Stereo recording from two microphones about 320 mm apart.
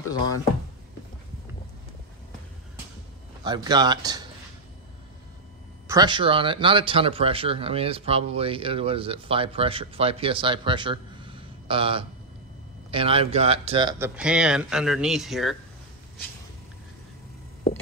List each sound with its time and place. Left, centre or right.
3.4 s speech: centre
5.9 s speech: centre